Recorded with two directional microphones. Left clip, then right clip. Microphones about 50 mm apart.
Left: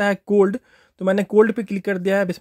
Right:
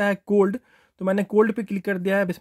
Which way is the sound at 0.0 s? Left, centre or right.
Centre.